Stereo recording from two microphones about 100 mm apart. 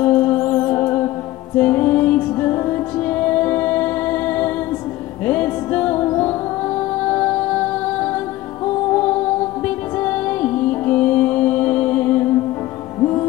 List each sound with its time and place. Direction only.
0.0 s music: 15° left (ahead or behind)
13.0 s music: 30° left (ahead or behind)